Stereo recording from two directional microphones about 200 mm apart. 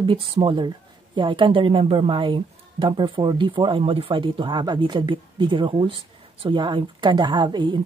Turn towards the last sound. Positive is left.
turn(degrees=-20)  # may be behind; listen again after turning